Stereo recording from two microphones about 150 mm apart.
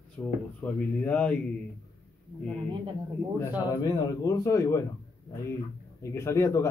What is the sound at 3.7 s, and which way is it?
Speech, 25° left (ahead or behind).